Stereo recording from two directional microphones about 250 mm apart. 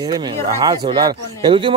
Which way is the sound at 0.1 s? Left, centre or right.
Centre.